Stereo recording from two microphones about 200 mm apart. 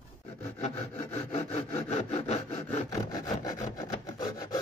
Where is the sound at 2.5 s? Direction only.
20° left (ahead or behind).